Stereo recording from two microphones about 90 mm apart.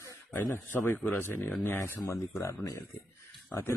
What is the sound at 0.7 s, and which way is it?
A man's voice, 20° left (ahead or behind).